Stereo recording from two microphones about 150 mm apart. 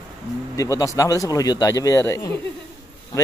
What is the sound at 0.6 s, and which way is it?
Speech, 20° left (ahead or behind).